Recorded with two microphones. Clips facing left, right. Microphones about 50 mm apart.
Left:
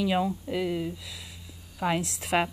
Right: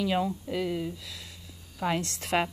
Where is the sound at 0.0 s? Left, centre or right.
Centre.